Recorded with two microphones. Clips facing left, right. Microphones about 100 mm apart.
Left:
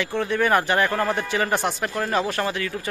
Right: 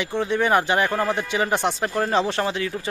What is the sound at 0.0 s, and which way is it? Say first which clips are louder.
Speech: even; 20° right (ahead or behind).